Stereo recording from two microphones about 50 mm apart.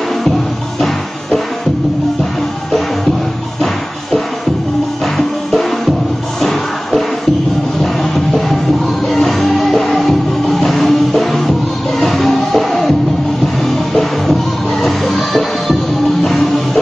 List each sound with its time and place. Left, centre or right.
0.7 s music: centre
5.0 s music: centre
14.8 s music: centre